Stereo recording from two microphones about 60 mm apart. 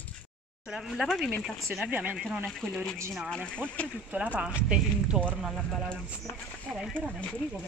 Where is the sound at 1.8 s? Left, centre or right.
Right.